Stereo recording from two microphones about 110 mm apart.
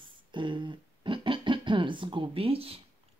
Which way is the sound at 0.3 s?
45° right (ahead or behind).